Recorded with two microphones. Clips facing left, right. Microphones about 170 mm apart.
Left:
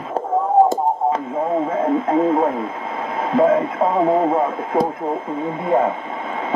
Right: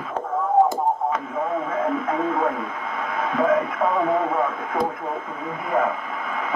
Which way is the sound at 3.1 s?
30° left (ahead or behind).